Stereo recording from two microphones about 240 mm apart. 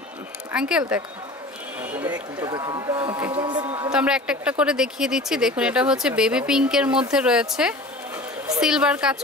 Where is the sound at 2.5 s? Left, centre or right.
Centre.